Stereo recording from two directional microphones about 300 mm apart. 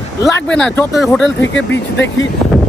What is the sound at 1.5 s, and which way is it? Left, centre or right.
Speech, left.